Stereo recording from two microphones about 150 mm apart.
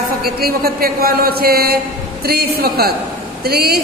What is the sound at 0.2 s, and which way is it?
A man's voice, 90° right.